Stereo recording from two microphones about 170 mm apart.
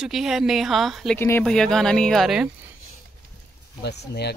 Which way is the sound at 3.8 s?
75° left (ahead or behind).